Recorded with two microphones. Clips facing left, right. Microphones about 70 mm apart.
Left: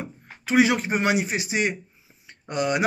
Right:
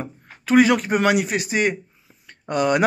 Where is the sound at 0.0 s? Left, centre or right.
Right.